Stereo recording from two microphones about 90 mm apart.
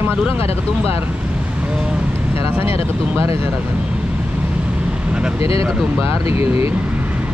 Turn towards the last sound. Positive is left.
turn(degrees=90)